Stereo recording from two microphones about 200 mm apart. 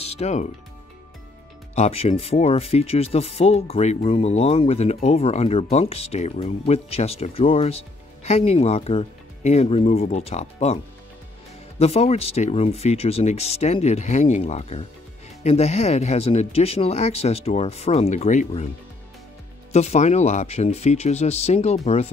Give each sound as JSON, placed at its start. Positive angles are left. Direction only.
{"t": 0.2, "sound": "speech", "side_deg": 35}
{"t": 1.8, "sound": "speech", "side_deg": 30}
{"t": 11.8, "sound": "speech", "side_deg": 30}
{"t": 19.7, "sound": "speech", "side_deg": 35}